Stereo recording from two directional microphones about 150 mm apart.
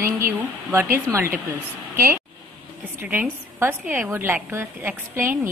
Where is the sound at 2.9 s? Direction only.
15° right (ahead or behind).